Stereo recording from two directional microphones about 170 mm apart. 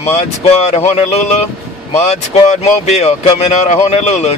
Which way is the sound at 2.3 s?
40° left (ahead or behind).